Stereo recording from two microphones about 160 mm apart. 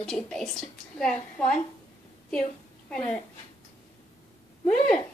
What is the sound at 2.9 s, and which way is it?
Speech, 10° left (ahead or behind).